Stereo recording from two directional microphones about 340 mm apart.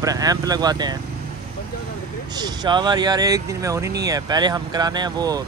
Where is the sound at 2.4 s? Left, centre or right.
Centre.